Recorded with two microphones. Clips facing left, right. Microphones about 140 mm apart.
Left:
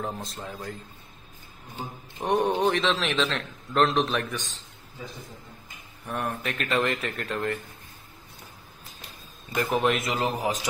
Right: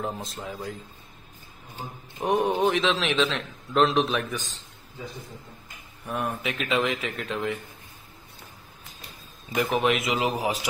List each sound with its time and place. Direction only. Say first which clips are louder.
0.0 s a man's voice: right 1 dB; centre (ahead or behind)
2.1 s a man's voice: even; centre (ahead or behind)
6.0 s a man's voice: right 1 dB; centre (ahead or behind)
9.5 s a man's voice: right 1 dB; 5° right (ahead or behind)